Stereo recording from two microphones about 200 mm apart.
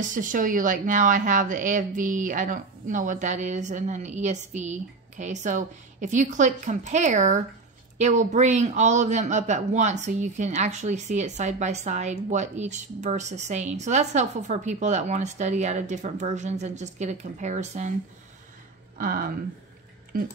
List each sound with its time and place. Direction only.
0.0 s a woman's voice: 40° right (ahead or behind)
18.9 s speech: 45° right (ahead or behind)